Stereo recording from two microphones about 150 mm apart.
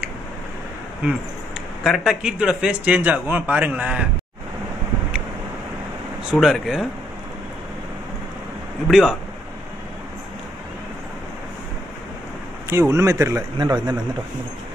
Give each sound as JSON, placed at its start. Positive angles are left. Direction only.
{"t": 1.8, "sound": "speech", "side_deg": -5}
{"t": 6.3, "sound": "speech", "side_deg": 0}
{"t": 8.8, "sound": "speech", "side_deg": 0}
{"t": 12.6, "sound": "a man's voice", "side_deg": -20}